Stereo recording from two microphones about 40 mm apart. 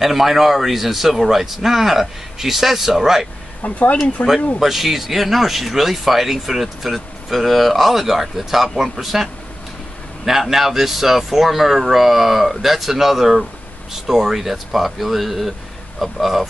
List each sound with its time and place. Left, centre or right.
0.0 s speech: centre
3.6 s speech: left
4.6 s speech: centre